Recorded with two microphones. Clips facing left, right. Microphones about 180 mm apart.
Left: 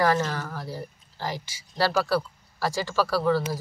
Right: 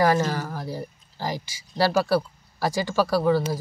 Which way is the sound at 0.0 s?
15° right (ahead or behind).